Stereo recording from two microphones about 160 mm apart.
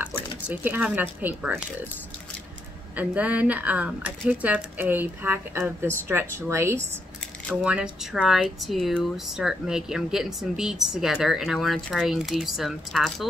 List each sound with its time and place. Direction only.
0.5 s speech: 10° right (ahead or behind)
3.0 s speech: 10° right (ahead or behind)